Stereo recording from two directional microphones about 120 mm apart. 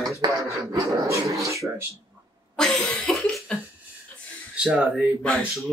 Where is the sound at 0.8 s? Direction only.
25° right (ahead or behind).